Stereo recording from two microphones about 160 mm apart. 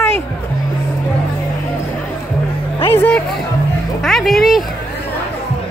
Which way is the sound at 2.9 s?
10° left (ahead or behind).